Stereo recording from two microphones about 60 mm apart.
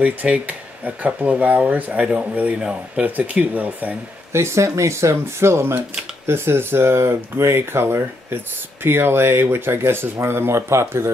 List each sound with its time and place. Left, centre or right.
0.0 s speech: right
4.3 s speech: right